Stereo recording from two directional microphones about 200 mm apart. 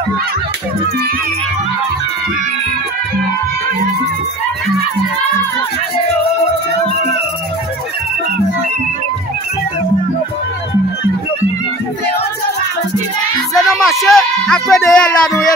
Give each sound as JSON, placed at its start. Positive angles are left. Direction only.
{"t": 13.6, "sound": "speech", "side_deg": 0}